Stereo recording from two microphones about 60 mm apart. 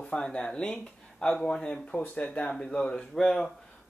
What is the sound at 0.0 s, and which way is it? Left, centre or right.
Speech, centre.